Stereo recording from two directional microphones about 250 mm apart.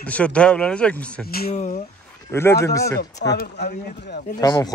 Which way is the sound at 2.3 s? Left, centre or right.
Centre.